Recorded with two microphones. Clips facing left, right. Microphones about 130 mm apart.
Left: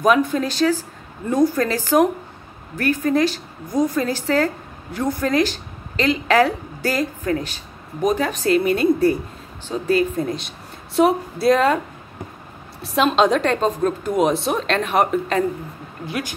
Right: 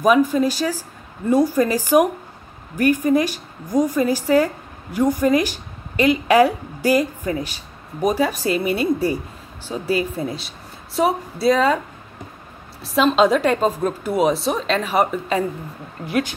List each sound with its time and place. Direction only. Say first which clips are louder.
0.0 s a woman's voice: right 2 dB; 5° right (ahead or behind)
12.8 s a woman's voice: right 1 dB; centre (ahead or behind)